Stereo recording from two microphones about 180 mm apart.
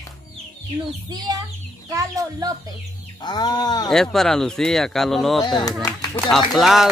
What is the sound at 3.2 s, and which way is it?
Livestock, 25° left (ahead or behind).